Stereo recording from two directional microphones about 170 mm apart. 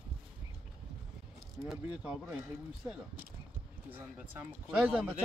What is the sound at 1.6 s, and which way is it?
Speech, 5° right (ahead or behind).